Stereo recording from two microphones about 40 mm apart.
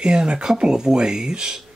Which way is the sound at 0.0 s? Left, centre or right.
Right.